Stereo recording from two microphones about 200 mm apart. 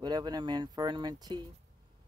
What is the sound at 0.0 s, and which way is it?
Speech, 20° right (ahead or behind).